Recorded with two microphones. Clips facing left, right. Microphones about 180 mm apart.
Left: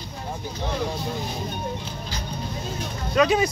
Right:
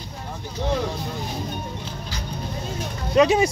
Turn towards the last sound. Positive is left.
turn(degrees=-25)  # may be behind; listen again after turning